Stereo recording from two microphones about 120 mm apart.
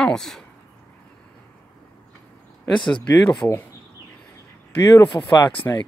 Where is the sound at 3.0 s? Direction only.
5° left (ahead or behind).